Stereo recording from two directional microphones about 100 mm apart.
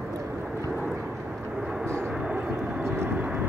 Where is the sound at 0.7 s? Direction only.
5° right (ahead or behind).